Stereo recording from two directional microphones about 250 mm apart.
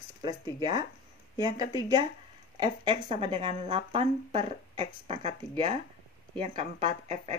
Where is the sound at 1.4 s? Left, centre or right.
Centre.